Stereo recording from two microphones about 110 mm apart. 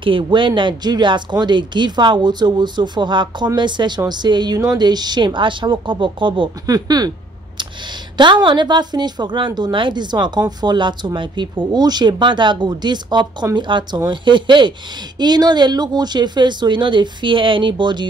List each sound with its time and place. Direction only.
0.0 s speech: 50° right (ahead or behind)
6.6 s speech: 35° right (ahead or behind)
8.2 s speech: 45° right (ahead or behind)